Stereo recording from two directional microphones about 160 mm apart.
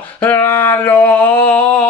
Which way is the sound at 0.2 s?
10° left (ahead or behind).